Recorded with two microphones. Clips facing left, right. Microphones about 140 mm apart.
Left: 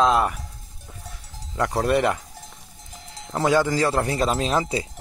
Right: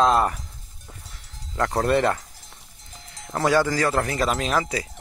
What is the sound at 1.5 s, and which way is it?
Speech, 15° left (ahead or behind).